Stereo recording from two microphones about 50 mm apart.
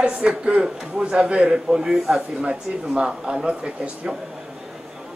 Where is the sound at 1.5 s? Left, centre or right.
Centre.